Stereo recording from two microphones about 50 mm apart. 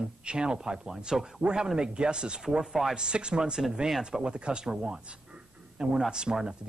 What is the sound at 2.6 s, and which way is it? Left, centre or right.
Speech, centre.